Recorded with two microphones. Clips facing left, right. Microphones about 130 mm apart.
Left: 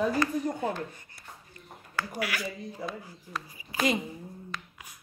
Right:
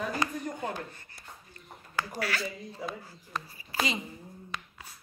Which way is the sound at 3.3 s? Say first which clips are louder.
Right 1 dB; 5° left (ahead or behind).